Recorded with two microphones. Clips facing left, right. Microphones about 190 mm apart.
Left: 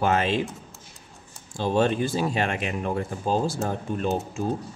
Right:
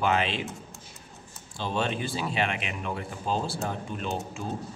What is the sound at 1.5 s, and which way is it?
Speech, 45° left (ahead or behind).